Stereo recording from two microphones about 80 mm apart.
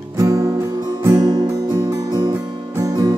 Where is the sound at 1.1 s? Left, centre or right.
Right.